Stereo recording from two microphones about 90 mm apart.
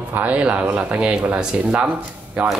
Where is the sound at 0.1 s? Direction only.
15° right (ahead or behind).